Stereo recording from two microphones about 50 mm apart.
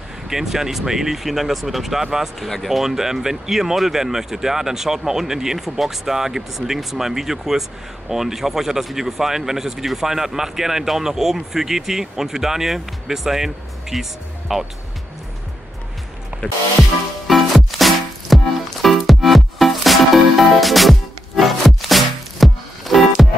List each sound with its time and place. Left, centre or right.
0.3 s speech: centre
17.3 s music: centre